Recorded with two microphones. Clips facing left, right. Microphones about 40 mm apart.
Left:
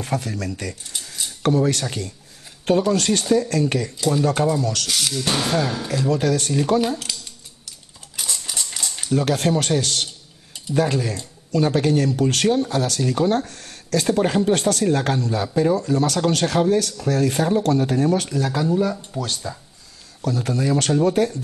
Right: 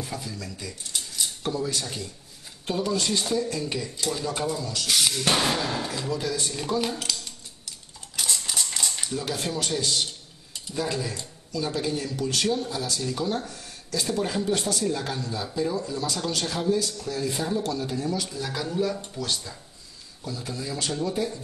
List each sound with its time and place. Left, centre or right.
0.0 s speech: left
4.8 s speech: centre
5.1 s speech: centre
6.0 s speech: left
7.1 s a sound: centre
9.1 s speech: left
18.7 s speech: centre
19.1 s speech: left
20.2 s speech: left